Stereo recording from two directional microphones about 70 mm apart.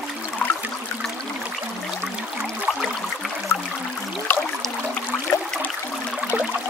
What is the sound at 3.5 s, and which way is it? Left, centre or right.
Music, left.